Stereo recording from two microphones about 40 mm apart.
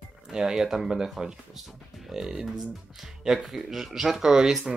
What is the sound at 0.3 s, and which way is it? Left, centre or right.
Speech, centre.